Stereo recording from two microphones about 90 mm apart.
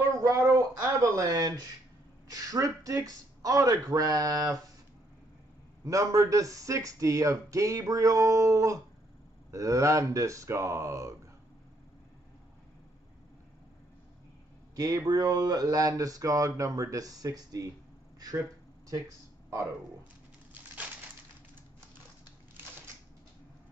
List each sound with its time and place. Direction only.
0.2 s a sound: 30° right (ahead or behind)
2.2 s speech: 40° right (ahead or behind)
5.9 s speech: 40° right (ahead or behind)
14.8 s speech: 45° right (ahead or behind)